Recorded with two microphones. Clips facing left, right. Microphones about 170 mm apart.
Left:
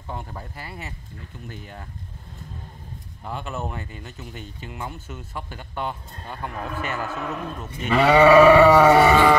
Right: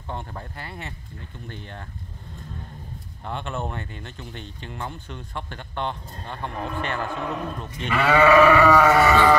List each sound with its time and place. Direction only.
0.1 s speech: 5° left (ahead or behind)
3.3 s speech: 5° left (ahead or behind)
7.9 s sheep: 25° left (ahead or behind)